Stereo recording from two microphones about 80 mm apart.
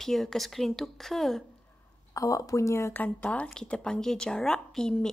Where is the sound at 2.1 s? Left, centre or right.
Left.